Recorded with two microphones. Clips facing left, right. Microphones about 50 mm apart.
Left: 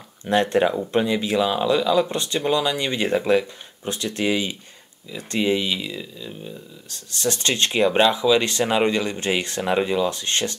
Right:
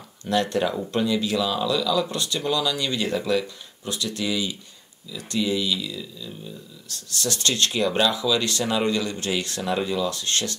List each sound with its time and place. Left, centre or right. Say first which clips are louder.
0.2 s speech: left 4 dB; left